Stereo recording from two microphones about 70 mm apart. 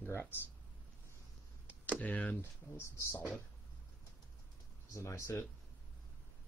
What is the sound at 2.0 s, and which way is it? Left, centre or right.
Speech, left.